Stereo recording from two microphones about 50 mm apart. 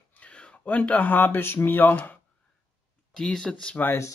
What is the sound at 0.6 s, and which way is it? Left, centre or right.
Speech, left.